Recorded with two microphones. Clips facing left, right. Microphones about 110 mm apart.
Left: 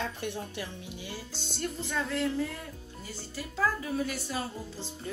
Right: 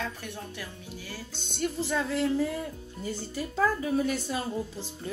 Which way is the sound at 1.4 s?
Centre (ahead or behind).